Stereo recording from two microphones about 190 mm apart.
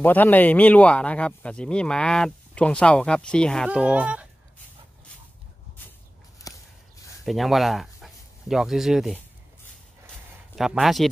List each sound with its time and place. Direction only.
0.0 s speech: 10° left (ahead or behind); by 4.3 s 5° right (ahead or behind)
5.8 s shuffle: 10° left (ahead or behind)
6.5 s a sound: 20° left (ahead or behind)
7.2 s speech: centre (ahead or behind)
10.5 s speech: centre (ahead or behind)